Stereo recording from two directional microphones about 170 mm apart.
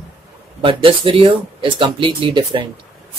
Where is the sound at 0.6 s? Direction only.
30° right (ahead or behind).